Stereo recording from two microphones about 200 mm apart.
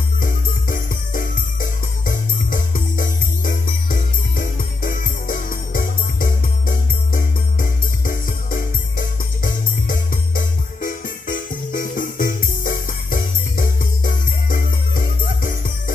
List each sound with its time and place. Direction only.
0.2 s jingle bell: 45° left (ahead or behind)